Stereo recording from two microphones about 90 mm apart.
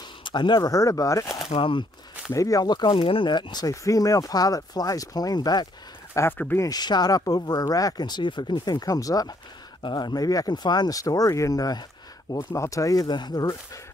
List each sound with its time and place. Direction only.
0.2 s speech: 55° left (ahead or behind)
0.7 s speech: 40° left (ahead or behind)
1.5 s speech: 75° left (ahead or behind)
2.3 s speech: 40° left (ahead or behind)
2.9 s speech: 90° left; by 3.6 s 60° left (ahead or behind)
3.6 s speech: 40° left (ahead or behind)
6.1 s speech: 30° left (ahead or behind)
6.6 s speech: 50° left (ahead or behind)
9.8 s speech: 55° left (ahead or behind)